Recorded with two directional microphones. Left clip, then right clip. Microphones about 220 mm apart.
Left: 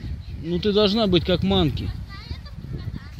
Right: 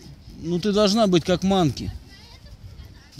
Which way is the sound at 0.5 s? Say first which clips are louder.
Even; 45° right (ahead or behind).